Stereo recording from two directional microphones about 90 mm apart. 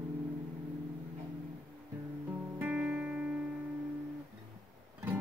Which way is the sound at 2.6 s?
15° right (ahead or behind).